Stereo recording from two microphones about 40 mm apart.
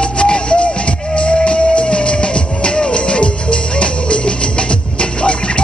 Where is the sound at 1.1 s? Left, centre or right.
Left.